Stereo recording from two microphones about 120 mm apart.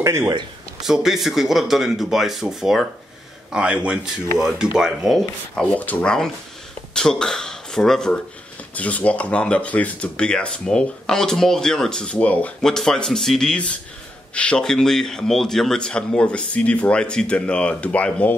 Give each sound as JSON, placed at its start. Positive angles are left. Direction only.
{"t": 0.0, "sound": "speech", "side_deg": -25}
{"t": 0.8, "sound": "speech", "side_deg": -5}
{"t": 5.6, "sound": "speech", "side_deg": 15}